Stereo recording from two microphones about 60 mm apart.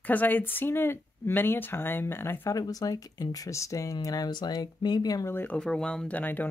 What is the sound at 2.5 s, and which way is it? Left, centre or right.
Speech, left.